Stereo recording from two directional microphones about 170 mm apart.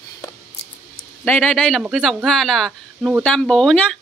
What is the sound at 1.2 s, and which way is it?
A man's voice, 10° left (ahead or behind).